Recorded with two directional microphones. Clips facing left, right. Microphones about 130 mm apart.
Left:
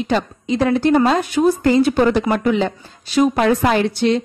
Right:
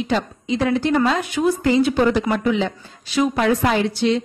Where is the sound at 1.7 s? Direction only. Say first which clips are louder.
Left 2 dB; 50° left (ahead or behind).